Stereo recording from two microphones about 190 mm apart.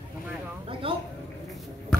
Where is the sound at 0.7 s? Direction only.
30° right (ahead or behind).